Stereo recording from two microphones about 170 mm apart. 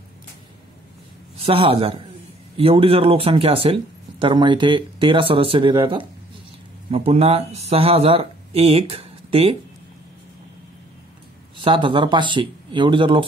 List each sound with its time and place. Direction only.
1.4 s speech: 35° right (ahead or behind)
11.6 s speech: 30° right (ahead or behind)